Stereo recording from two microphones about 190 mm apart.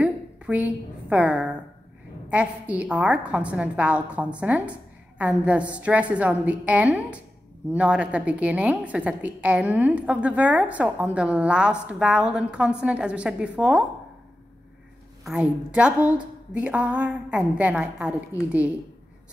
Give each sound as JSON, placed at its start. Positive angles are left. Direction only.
{"t": 0.0, "sound": "a sound", "side_deg": -5}
{"t": 2.2, "sound": "a woman's voice", "side_deg": -5}
{"t": 15.2, "sound": "a woman's voice", "side_deg": -5}
{"t": 18.3, "sound": "a woman's voice", "side_deg": 15}